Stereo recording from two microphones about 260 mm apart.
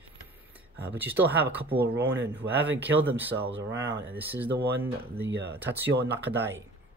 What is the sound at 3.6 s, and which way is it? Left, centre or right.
Speech, right.